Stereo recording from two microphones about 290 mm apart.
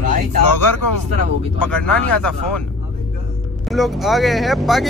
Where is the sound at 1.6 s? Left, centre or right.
Centre.